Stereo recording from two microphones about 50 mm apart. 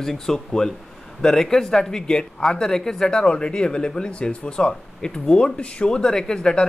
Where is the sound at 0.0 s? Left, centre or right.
Centre.